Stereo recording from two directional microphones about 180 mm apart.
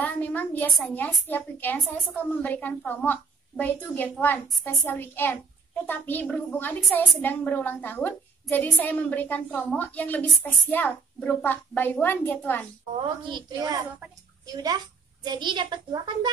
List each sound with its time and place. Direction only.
0.0 s a woman's voice: 10° left (ahead or behind)
13.3 s a child's voice: 20° right (ahead or behind)